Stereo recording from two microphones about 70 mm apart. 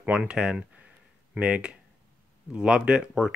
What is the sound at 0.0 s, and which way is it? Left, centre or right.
Speech, centre.